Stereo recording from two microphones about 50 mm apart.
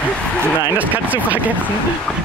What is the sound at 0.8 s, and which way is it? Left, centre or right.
Speech, right.